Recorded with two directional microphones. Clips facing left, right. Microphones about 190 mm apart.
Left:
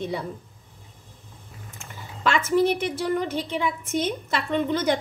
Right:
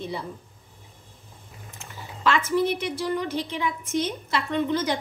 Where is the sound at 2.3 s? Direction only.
50° left (ahead or behind).